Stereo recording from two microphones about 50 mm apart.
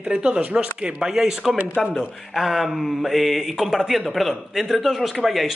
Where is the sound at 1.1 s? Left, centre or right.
Centre.